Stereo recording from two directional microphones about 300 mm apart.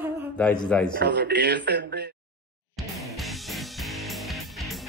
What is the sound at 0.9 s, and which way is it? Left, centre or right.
A man's voice, right.